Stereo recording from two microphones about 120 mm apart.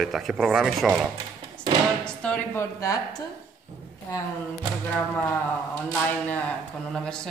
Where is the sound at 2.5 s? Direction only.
25° left (ahead or behind).